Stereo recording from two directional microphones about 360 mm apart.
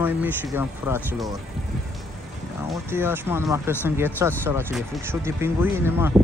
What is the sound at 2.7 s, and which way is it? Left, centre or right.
Speech, centre.